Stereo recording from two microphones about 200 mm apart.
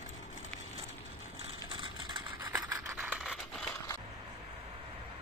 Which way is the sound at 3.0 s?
5° right (ahead or behind).